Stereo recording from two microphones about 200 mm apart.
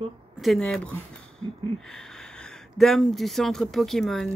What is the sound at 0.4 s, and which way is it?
Speech, 5° left (ahead or behind).